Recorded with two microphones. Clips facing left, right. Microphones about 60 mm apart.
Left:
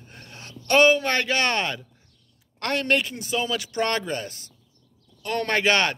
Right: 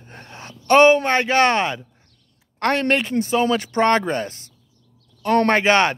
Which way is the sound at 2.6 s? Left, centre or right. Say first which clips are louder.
Right 4 dB; right.